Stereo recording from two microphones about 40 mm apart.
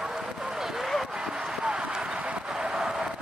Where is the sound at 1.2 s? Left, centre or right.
Centre.